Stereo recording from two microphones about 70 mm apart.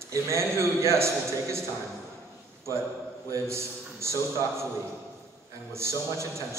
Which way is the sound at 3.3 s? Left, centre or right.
Right.